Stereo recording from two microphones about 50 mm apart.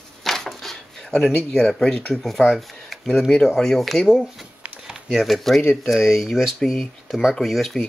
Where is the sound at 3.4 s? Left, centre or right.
Centre.